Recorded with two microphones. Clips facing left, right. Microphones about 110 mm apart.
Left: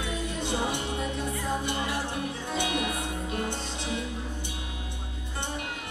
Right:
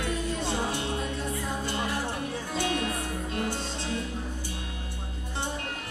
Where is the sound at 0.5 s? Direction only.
20° left (ahead or behind).